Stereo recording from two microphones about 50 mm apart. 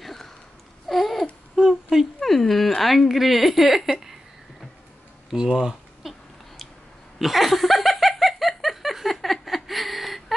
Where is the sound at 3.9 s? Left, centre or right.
Centre.